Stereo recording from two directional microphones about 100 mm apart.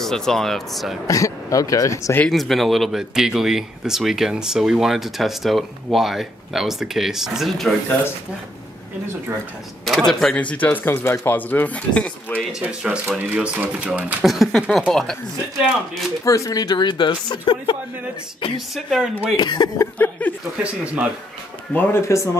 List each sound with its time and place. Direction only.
0.0 s speech: 5° left (ahead or behind)
1.0 s speech: 35° left (ahead or behind)
2.2 s speech: centre (ahead or behind)
9.8 s speech: 5° left (ahead or behind)
12.5 s speech: 10° right (ahead or behind)
14.2 s speech: centre (ahead or behind)
16.3 s speech: 35° left (ahead or behind); by 18.6 s 55° left (ahead or behind)
18.9 s speech: 5° right (ahead or behind)
19.3 s speech: 45° left (ahead or behind)
20.0 s speech: 15° left (ahead or behind)
20.6 s speech: 15° right (ahead or behind)
21.7 s speech: 20° left (ahead or behind)
22.0 s speech: 30° left (ahead or behind)